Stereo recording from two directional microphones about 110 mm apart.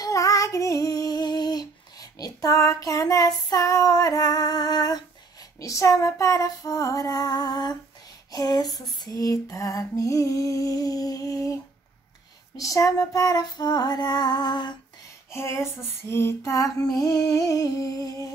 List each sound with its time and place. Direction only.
0.0 s female singing: 30° left (ahead or behind)
8.3 s lullaby: 35° left (ahead or behind)
15.3 s lullaby: 25° left (ahead or behind)